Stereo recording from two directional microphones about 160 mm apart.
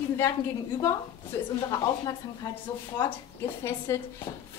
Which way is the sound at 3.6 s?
15° left (ahead or behind).